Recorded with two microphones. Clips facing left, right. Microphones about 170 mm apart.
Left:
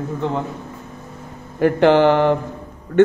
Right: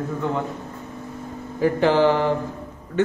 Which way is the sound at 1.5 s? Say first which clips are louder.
Left 5 dB; 65° left (ahead or behind).